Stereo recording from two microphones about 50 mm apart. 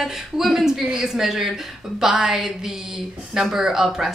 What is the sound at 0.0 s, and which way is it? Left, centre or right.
A woman's voice, centre.